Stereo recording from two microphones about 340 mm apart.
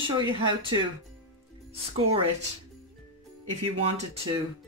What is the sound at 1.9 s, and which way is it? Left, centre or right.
Speech, centre.